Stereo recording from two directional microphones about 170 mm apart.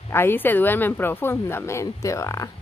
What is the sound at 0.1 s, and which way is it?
A woman's voice, 15° left (ahead or behind).